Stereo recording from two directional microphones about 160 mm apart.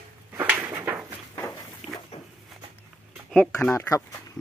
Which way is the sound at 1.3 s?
20° left (ahead or behind).